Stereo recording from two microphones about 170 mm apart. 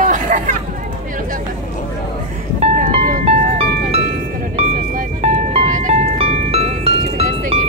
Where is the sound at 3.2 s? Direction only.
35° right (ahead or behind).